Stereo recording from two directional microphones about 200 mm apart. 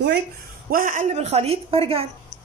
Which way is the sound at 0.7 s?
40° right (ahead or behind).